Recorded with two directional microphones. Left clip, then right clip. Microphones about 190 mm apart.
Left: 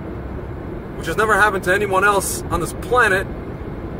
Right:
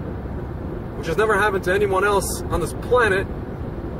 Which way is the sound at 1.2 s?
25° left (ahead or behind).